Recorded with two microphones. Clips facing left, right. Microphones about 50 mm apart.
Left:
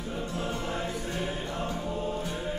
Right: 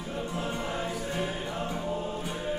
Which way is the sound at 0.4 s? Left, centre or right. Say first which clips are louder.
Even; centre.